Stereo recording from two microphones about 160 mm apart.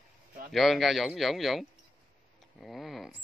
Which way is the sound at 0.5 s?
Centre (ahead or behind).